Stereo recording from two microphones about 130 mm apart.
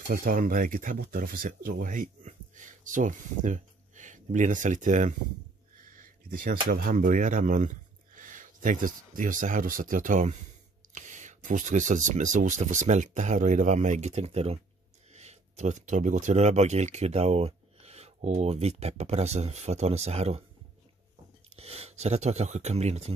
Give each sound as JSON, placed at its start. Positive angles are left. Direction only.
{"t": 0.1, "sound": "speech", "side_deg": -90}
{"t": 5.9, "sound": "speech", "side_deg": -90}
{"t": 21.5, "sound": "speech", "side_deg": -50}